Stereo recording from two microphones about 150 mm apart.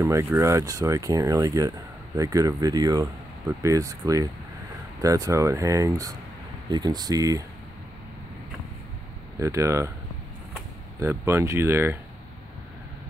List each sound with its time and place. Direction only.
0.0 s speech: 20° right (ahead or behind)
9.4 s speech: 20° right (ahead or behind)
11.0 s speech: 15° right (ahead or behind)